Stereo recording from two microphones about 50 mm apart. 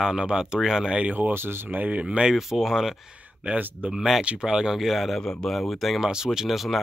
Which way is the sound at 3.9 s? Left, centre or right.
Centre.